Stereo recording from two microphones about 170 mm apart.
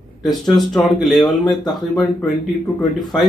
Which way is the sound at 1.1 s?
25° left (ahead or behind).